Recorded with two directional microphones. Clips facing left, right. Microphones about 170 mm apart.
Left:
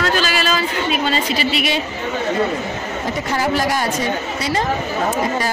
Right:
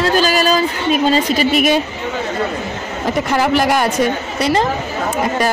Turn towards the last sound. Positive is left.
turn(degrees=-65)  # may be behind; listen again after turning